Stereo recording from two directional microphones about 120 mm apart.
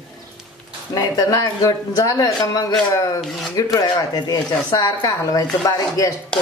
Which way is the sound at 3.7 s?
35° left (ahead or behind).